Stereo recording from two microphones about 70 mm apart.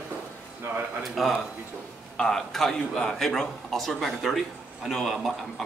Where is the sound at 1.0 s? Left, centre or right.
Centre.